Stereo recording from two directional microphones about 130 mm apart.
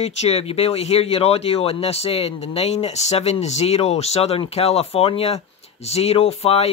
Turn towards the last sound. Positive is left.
turn(degrees=50)  # may be behind; listen again after turning